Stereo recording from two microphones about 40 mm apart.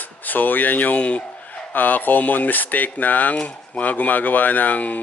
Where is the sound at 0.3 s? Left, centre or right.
Left.